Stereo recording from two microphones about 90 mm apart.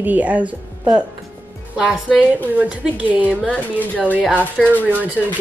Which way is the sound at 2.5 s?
15° right (ahead or behind).